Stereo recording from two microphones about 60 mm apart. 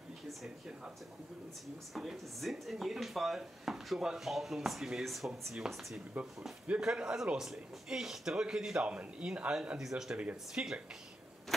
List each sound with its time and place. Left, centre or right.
2.0 s speech: centre
6.2 s a man's voice: right
10.1 s speech: centre